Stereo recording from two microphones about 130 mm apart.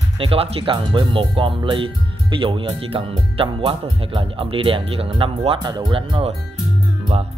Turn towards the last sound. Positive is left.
turn(degrees=-50)  # may be behind; listen again after turning